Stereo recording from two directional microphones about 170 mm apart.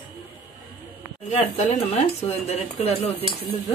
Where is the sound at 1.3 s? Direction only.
40° left (ahead or behind).